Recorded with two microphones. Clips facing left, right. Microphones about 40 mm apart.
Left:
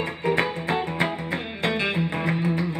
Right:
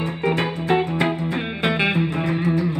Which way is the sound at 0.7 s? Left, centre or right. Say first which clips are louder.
Right 5 dB; right.